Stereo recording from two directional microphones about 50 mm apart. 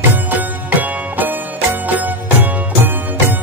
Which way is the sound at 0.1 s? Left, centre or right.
Right.